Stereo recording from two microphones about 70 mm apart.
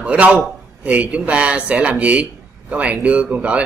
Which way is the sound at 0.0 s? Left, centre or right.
Centre.